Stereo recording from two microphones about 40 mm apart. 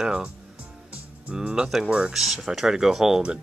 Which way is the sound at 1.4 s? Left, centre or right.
Right.